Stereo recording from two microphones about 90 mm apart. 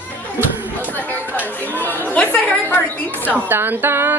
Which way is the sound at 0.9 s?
20° left (ahead or behind).